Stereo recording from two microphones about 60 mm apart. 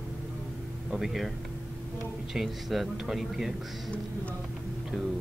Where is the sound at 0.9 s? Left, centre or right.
Centre.